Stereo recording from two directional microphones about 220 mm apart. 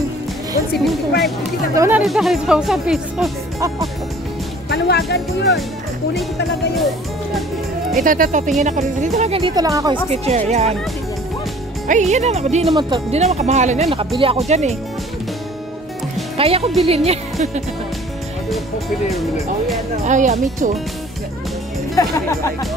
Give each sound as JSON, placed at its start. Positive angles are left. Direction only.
{"t": 1.8, "sound": "speech", "side_deg": -5}
{"t": 4.6, "sound": "music", "side_deg": 50}
{"t": 5.1, "sound": "speech", "side_deg": 50}
{"t": 8.0, "sound": "speech", "side_deg": -40}
{"t": 10.0, "sound": "speech", "side_deg": -30}
{"t": 11.9, "sound": "speech", "side_deg": -30}
{"t": 16.3, "sound": "speech", "side_deg": -25}
{"t": 20.1, "sound": "speech", "side_deg": -35}
{"t": 22.0, "sound": "speech", "side_deg": 15}